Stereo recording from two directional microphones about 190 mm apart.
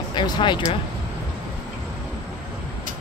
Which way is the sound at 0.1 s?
25° left (ahead or behind).